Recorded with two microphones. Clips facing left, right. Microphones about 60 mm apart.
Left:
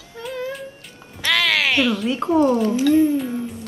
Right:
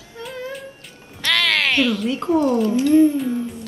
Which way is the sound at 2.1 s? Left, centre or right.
Left.